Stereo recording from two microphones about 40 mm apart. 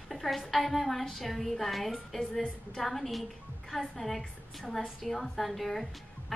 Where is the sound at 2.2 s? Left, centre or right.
Centre.